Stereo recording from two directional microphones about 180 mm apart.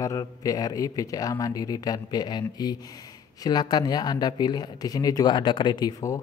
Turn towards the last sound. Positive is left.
turn(degrees=20)  # may be behind; listen again after turning